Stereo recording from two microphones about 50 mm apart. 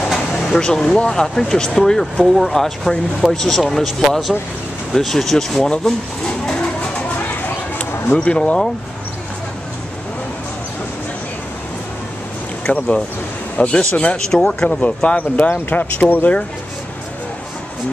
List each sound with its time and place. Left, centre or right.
0.0 s air conditioning: centre
0.4 s speech: centre
5.9 s a sound: centre
7.0 s a sound: left
8.2 s speech: left
12.6 s speech: left
15.1 s speech: left